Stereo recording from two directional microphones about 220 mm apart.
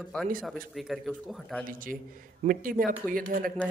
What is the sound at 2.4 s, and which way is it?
Speech, 40° right (ahead or behind).